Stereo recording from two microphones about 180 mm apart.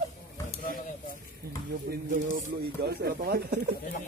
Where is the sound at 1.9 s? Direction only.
55° right (ahead or behind).